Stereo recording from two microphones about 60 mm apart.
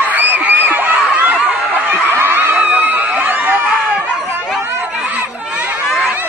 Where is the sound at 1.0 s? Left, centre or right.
Right.